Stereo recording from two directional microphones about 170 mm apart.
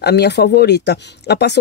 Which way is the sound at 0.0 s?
75° left (ahead or behind).